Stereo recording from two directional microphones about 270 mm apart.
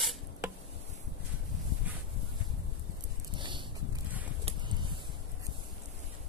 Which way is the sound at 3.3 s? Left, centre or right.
Centre.